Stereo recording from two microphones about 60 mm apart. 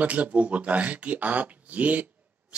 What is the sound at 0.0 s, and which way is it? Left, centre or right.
Speech, right.